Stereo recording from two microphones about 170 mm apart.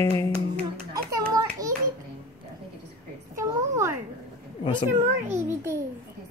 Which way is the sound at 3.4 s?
15° right (ahead or behind).